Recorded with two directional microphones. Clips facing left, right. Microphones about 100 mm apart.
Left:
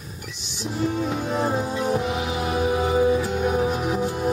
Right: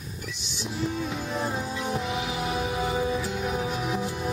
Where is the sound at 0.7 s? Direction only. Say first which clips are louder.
Left 6 dB; 50° left (ahead or behind).